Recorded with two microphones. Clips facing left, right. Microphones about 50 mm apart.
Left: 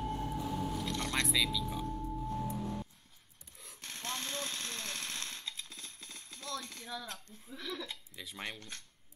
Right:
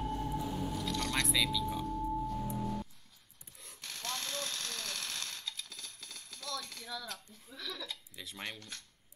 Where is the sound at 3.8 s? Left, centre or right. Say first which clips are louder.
Even; left.